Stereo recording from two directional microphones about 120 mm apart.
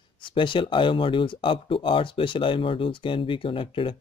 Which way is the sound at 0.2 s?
45° left (ahead or behind).